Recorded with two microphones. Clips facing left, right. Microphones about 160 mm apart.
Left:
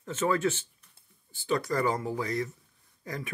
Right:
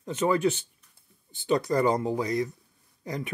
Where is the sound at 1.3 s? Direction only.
20° right (ahead or behind).